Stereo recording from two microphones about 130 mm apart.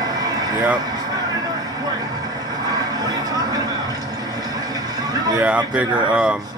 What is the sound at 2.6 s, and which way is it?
Music, 30° right (ahead or behind).